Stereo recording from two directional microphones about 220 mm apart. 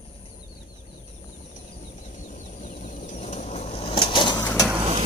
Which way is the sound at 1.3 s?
35° left (ahead or behind).